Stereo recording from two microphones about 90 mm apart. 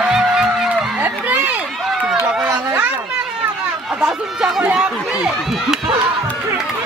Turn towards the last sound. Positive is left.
turn(degrees=-5)  # may be behind; listen again after turning